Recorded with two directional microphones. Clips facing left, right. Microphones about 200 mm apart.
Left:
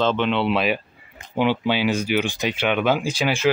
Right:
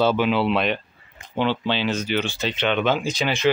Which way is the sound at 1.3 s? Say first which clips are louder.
Left 2 dB; 10° left (ahead or behind).